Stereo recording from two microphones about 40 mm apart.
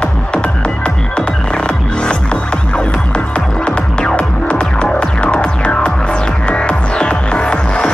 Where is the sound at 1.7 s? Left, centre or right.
Left.